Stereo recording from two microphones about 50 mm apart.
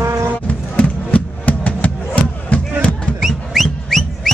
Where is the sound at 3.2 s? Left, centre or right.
Centre.